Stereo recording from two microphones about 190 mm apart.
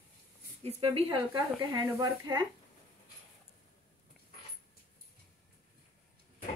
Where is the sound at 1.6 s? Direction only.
20° right (ahead or behind).